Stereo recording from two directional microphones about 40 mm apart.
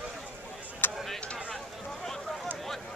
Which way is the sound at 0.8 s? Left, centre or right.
Left.